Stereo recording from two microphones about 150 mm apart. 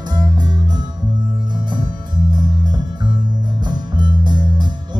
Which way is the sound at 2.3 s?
30° right (ahead or behind).